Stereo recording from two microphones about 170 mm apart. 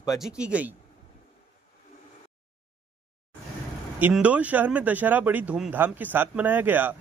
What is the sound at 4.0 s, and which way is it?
Speech, 10° right (ahead or behind).